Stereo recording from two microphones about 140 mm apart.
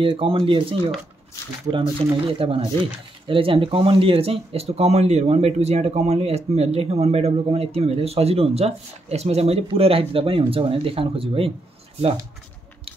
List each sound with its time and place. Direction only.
0.0 s speech: 40° right (ahead or behind)